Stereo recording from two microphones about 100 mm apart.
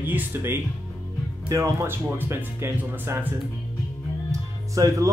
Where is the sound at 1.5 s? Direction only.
30° right (ahead or behind).